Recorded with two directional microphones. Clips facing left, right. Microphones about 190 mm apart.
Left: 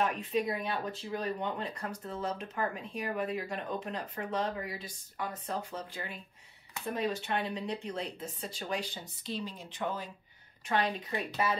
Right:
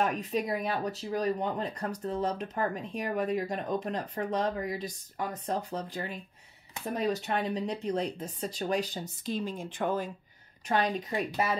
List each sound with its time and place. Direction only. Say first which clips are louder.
0.3 s speech: right 2 dB; 40° right (ahead or behind)
10.7 s speech: right 3 dB; 40° right (ahead or behind)